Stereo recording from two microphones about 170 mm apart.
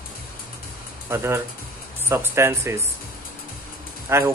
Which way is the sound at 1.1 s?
15° right (ahead or behind).